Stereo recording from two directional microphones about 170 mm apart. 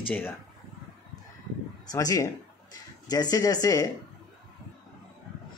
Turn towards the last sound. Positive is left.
turn(degrees=20)  # may be behind; listen again after turning